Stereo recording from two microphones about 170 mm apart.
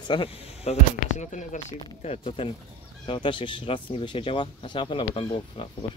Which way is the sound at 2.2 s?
30° left (ahead or behind).